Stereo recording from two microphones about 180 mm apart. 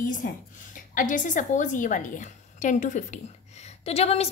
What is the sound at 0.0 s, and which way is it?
A woman's voice, 45° left (ahead or behind).